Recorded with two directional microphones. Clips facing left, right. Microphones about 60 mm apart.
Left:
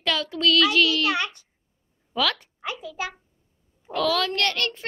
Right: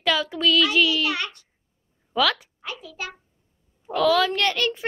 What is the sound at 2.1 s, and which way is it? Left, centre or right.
Speech, centre.